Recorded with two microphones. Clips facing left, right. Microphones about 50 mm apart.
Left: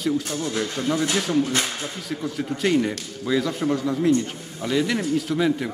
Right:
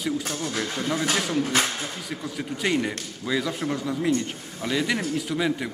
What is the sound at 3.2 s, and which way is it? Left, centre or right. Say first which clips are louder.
A man's voice: left 4 dB; centre.